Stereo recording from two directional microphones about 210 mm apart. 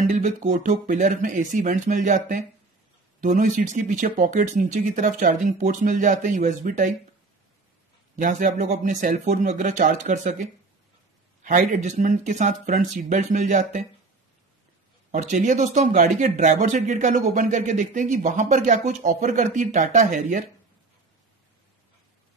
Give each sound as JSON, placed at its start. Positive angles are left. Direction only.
{"t": 0.1, "sound": "speech", "side_deg": -35}
{"t": 8.2, "sound": "speech", "side_deg": -40}
{"t": 11.4, "sound": "speech", "side_deg": -40}
{"t": 15.0, "sound": "speech", "side_deg": -35}